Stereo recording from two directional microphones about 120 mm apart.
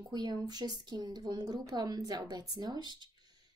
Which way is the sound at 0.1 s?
35° right (ahead or behind).